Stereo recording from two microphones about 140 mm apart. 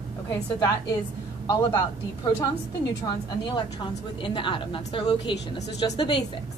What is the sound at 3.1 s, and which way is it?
A woman's voice, 35° left (ahead or behind).